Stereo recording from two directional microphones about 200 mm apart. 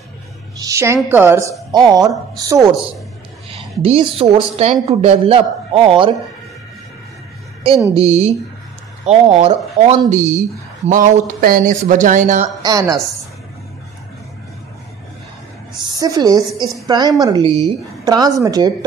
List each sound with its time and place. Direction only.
0.6 s a woman's voice: 15° right (ahead or behind)
3.5 s a woman's voice: 30° right (ahead or behind)
8.0 s speech: 30° right (ahead or behind)
12.6 s a woman's voice: 15° right (ahead or behind)
15.8 s a woman's voice: 20° right (ahead or behind)